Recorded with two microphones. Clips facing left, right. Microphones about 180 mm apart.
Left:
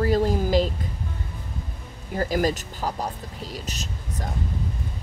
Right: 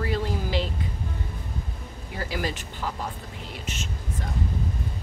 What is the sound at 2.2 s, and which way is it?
Speech, 45° left (ahead or behind).